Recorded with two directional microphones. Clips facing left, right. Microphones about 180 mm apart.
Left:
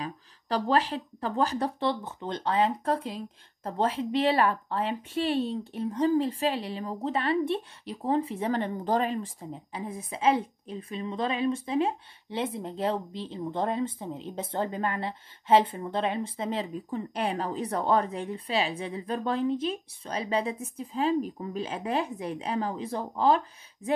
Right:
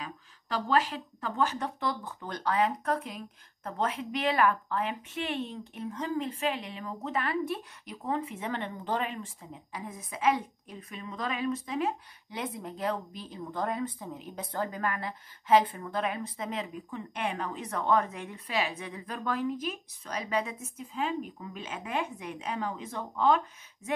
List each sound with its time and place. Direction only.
0.0 s speech: 35° left (ahead or behind)